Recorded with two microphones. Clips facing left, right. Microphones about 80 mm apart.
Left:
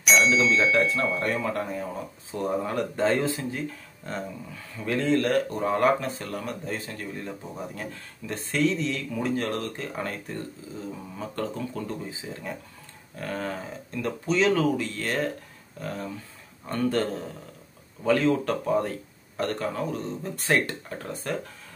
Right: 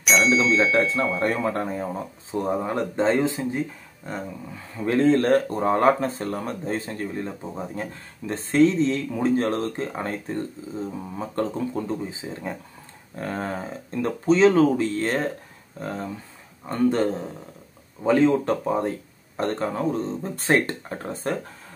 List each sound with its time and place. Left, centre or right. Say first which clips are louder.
0.0 s speech: right 1 dB; centre
1.2 s speech: right 4 dB; right; by 4.2 s centre
4.7 s speech: right 5 dB; right